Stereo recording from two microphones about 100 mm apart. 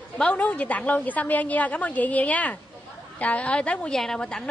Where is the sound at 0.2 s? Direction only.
10° left (ahead or behind).